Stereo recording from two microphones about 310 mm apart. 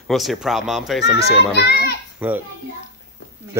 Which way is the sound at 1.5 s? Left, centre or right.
Left.